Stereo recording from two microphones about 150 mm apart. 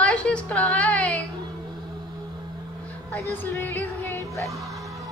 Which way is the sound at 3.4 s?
15° left (ahead or behind).